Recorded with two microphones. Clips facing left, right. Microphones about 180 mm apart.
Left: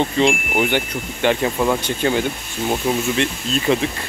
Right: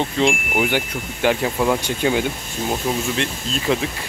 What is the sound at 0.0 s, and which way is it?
Speech, centre (ahead or behind).